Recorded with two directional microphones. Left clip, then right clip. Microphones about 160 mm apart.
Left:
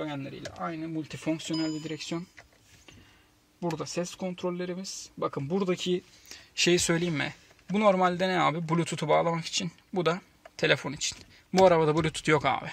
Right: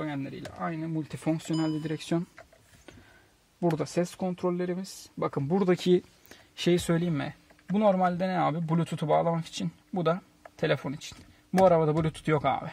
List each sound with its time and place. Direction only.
0.6 s speech: 30° right (ahead or behind)
1.9 s speech: 60° right (ahead or behind)
3.7 s speech: 50° right (ahead or behind)
6.5 s speech: 25° right (ahead or behind)